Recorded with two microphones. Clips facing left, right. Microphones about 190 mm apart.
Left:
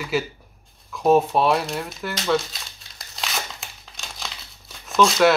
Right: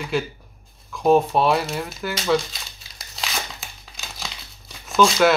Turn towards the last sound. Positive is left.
turn(degrees=0)  # may be behind; listen again after turning